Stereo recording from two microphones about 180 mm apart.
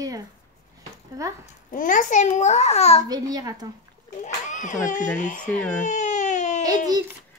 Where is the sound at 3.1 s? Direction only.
20° right (ahead or behind).